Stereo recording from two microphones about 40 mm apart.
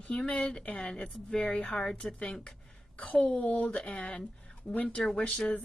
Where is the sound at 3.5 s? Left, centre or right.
Left.